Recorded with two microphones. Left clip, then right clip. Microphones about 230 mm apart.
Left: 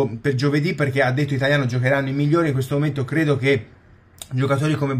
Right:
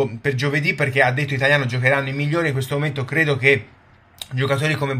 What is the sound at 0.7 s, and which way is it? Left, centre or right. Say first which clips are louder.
Speech: right 6 dB; right.